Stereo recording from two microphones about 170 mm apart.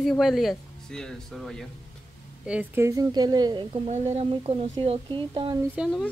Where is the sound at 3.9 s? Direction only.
40° right (ahead or behind).